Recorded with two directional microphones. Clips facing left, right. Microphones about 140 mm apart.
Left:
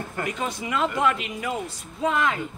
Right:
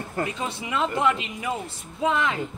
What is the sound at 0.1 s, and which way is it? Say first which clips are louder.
A woman's voice: right 1 dB; 30° right (ahead or behind).